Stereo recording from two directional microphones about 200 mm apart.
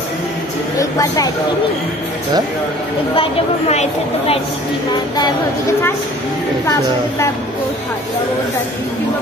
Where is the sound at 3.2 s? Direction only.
30° left (ahead or behind).